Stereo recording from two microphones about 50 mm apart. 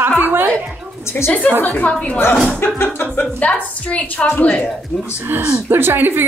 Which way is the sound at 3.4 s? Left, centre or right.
Left.